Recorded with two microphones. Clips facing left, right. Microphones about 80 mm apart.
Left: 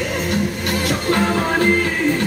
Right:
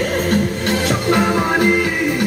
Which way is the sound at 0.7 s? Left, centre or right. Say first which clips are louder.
Right 3 dB; right.